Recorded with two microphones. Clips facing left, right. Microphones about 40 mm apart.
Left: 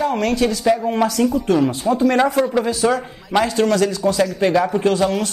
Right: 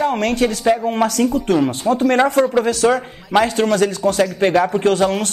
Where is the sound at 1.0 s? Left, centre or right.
Right.